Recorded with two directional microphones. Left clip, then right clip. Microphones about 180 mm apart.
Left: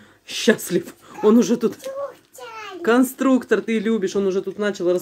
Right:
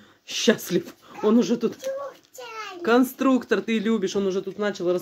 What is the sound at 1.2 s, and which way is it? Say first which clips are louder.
Speech: left 5 dB; 15° left (ahead or behind).